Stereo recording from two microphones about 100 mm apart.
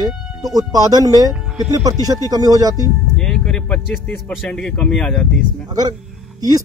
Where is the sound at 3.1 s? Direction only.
5° left (ahead or behind).